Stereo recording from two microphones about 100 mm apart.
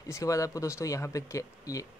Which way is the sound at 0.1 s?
35° left (ahead or behind).